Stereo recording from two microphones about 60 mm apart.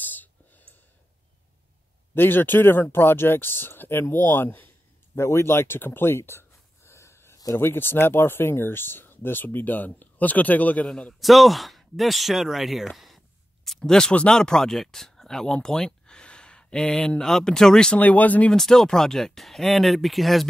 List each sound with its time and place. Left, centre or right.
0.0 s whispering: left
2.1 s speech: left
5.1 s a sound: left
7.5 s speech: left
10.9 s speech: centre
11.1 s speech: centre
17.9 s speech: left
18.5 s speech: centre